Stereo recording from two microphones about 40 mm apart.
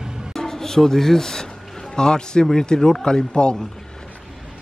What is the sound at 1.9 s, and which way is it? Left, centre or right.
A man's voice, centre.